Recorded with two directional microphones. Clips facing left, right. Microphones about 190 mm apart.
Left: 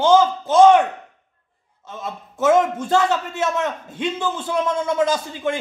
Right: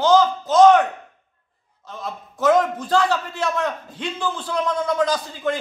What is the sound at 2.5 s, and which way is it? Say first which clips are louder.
A man's voice: left 2 dB; 25° left (ahead or behind).